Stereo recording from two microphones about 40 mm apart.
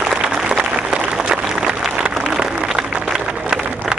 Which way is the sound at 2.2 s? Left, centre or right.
Centre.